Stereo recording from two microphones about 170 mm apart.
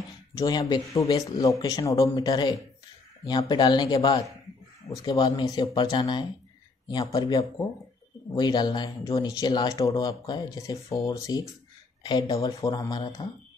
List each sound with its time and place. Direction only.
0.3 s speech: 25° left (ahead or behind)